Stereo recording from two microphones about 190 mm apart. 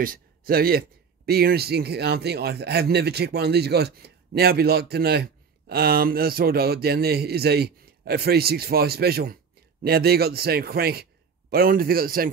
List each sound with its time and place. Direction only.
0.0 s speech: 50° right (ahead or behind)